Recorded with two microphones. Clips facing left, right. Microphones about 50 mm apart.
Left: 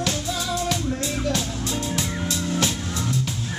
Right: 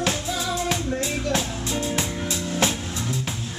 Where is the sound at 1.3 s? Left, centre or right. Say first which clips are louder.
Even; centre.